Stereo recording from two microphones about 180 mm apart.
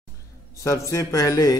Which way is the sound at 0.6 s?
15° left (ahead or behind).